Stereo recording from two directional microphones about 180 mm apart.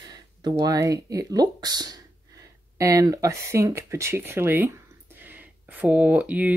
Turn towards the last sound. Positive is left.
turn(degrees=-10)  # may be behind; listen again after turning